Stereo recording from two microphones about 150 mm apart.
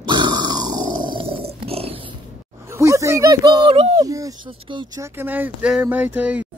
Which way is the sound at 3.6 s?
40° right (ahead or behind).